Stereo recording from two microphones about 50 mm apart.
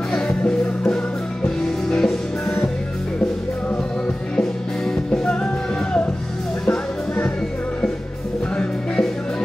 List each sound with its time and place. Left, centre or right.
1.9 s music: centre
4.4 s music: centre